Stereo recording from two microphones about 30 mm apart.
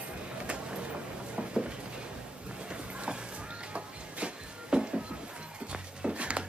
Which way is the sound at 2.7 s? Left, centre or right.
Right.